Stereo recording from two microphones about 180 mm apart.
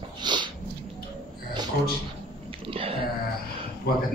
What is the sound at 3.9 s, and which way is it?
Speech, 60° left (ahead or behind).